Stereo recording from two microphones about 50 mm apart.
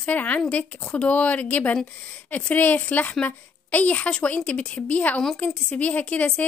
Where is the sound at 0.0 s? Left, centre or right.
Left.